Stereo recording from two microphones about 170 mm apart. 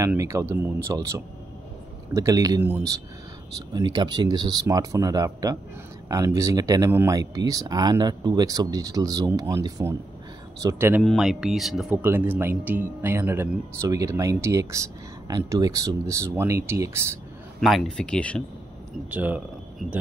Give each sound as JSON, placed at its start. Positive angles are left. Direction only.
{"t": 0.0, "sound": "speech", "side_deg": -15}
{"t": 3.5, "sound": "speech", "side_deg": -25}
{"t": 11.0, "sound": "speech", "side_deg": 0}
{"t": 17.6, "sound": "speech", "side_deg": 0}
{"t": 19.0, "sound": "speech", "side_deg": -10}